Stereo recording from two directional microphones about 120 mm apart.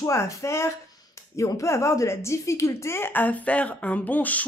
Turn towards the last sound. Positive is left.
turn(degrees=15)  # may be behind; listen again after turning